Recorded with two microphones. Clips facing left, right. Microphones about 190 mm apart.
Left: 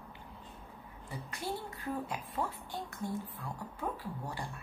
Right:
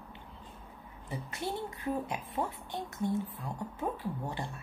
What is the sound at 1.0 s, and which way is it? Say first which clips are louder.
A woman's voice: right 3 dB; 20° right (ahead or behind).